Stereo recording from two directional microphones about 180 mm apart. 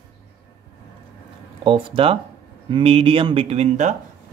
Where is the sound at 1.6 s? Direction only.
30° right (ahead or behind).